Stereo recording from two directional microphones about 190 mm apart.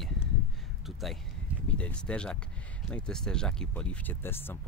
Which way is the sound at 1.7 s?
5° left (ahead or behind).